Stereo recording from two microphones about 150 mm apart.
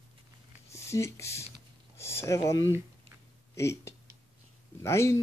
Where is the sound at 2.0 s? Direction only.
20° left (ahead or behind).